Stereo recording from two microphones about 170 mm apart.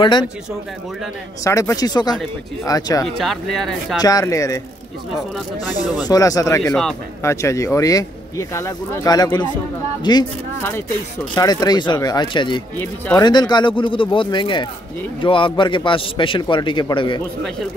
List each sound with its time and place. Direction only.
0.0 s speech: 25° left (ahead or behind)
1.4 s speech: 20° left (ahead or behind)
3.2 s speech: centre (ahead or behind)
4.0 s speech: 20° left (ahead or behind)
5.8 s speech: 25° left (ahead or behind)
6.6 s speech: 5° left (ahead or behind)
7.2 s speech: 15° left (ahead or behind)
11.3 s speech: 25° left (ahead or behind)